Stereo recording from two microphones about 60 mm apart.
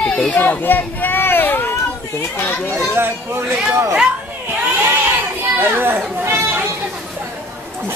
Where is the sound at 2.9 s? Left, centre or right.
Right.